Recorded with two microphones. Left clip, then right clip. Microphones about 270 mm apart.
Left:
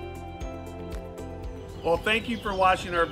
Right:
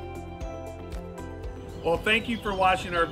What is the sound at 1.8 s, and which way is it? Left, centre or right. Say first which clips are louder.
Speech: even; centre.